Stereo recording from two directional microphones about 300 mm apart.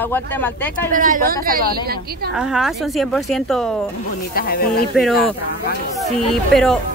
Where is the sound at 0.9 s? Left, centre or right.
Right.